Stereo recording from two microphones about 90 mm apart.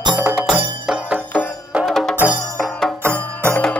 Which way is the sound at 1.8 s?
5° left (ahead or behind).